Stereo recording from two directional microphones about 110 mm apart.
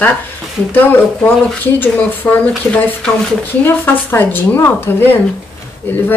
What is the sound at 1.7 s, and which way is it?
A woman's voice, 15° left (ahead or behind).